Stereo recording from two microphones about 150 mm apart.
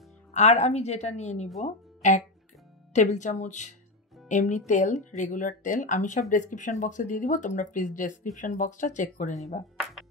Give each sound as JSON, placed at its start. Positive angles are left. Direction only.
{"t": 0.3, "sound": "a woman's voice", "side_deg": 50}
{"t": 2.0, "sound": "music", "side_deg": 55}
{"t": 2.9, "sound": "a woman's voice", "side_deg": 55}